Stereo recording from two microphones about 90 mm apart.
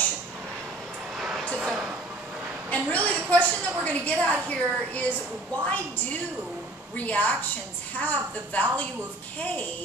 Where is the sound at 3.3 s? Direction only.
15° left (ahead or behind).